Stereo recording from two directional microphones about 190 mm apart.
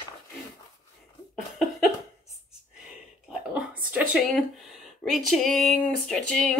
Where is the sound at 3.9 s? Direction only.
5° right (ahead or behind).